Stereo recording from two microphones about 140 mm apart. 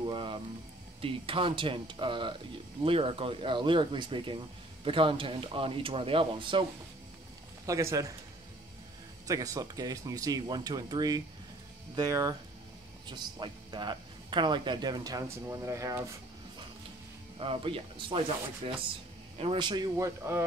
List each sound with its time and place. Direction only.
0.0 s a sound: 35° right (ahead or behind)
1.0 s speech: 40° right (ahead or behind)
7.6 s speech: 25° right (ahead or behind)
9.3 s speech: 25° right (ahead or behind)
17.4 s speech: 40° right (ahead or behind)
19.3 s a man's voice: 45° right (ahead or behind)
19.6 s speech: 30° right (ahead or behind)